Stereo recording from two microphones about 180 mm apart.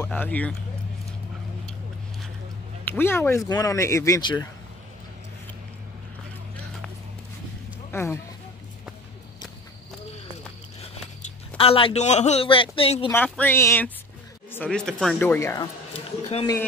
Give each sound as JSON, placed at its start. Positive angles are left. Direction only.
{"t": 0.1, "sound": "speech", "side_deg": 10}
{"t": 2.8, "sound": "speech", "side_deg": 10}
{"t": 7.9, "sound": "speech", "side_deg": 15}
{"t": 10.8, "sound": "speech", "side_deg": 35}
{"t": 13.1, "sound": "speech", "side_deg": 10}